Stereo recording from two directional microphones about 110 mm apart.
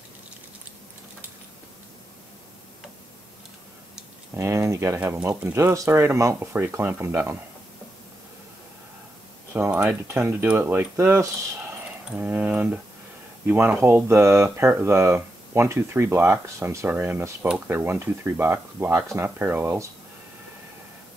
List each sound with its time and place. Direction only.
4.3 s speech: 25° right (ahead or behind)
5.6 s speech: 30° right (ahead or behind)
9.5 s speech: 15° right (ahead or behind)